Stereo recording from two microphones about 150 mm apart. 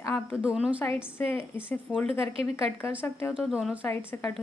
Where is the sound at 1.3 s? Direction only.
15° left (ahead or behind).